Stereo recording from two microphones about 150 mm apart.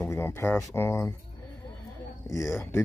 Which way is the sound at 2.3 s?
20° left (ahead or behind).